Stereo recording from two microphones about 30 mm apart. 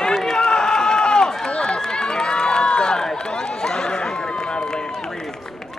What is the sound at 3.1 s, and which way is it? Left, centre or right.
Chatter, left.